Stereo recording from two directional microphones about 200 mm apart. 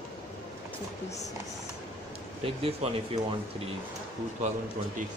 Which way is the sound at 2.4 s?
30° right (ahead or behind).